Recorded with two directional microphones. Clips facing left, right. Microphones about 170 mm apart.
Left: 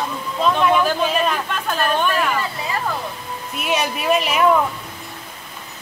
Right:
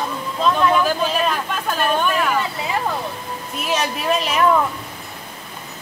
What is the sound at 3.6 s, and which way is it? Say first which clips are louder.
Speech: left 1 dB; 5° left (ahead or behind).